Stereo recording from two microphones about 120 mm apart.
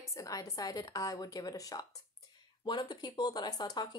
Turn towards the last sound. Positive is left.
turn(degrees=35)  # may be behind; listen again after turning